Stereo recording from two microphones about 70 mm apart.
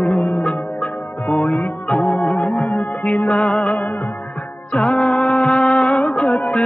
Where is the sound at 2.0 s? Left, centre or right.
Centre.